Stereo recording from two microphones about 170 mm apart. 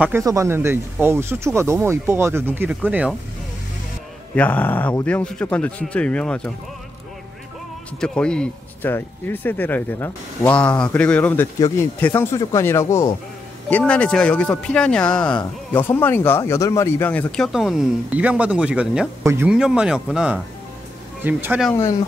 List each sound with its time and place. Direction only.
0.0 s speech: 15° right (ahead or behind)
4.4 s speech: 10° left (ahead or behind)
8.0 s speech: 5° left (ahead or behind)
17.5 s speech: centre (ahead or behind)